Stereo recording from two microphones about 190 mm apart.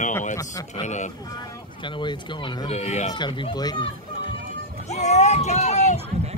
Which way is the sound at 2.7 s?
35° left (ahead or behind).